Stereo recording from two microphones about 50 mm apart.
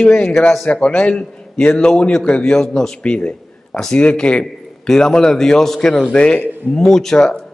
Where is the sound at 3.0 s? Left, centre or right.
Left.